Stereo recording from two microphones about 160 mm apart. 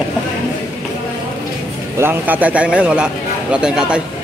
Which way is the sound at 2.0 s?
10° right (ahead or behind).